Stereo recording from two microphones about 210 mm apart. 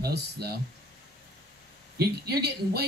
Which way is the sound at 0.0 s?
50° right (ahead or behind).